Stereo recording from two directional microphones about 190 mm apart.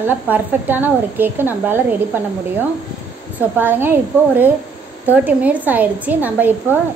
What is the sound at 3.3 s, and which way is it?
A woman's voice, 10° right (ahead or behind).